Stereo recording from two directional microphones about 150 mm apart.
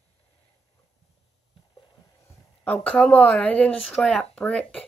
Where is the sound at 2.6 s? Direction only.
10° left (ahead or behind).